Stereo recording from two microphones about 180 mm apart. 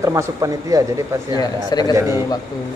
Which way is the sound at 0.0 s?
15° right (ahead or behind).